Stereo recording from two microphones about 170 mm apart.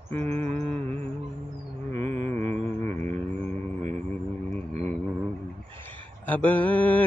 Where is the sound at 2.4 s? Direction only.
40° right (ahead or behind).